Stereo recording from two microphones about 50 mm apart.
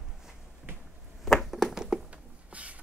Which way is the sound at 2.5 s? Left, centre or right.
Right.